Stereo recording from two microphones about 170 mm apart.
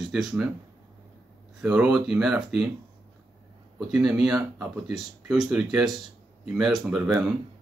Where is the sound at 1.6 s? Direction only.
5° right (ahead or behind).